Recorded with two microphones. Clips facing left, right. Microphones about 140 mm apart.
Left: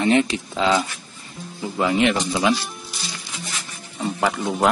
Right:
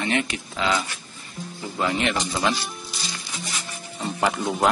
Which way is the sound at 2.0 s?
5° left (ahead or behind).